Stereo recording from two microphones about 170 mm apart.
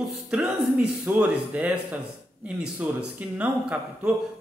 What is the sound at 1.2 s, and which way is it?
Speech, 5° right (ahead or behind).